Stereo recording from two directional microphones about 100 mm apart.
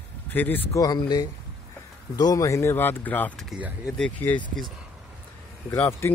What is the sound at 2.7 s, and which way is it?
Speech, 20° left (ahead or behind).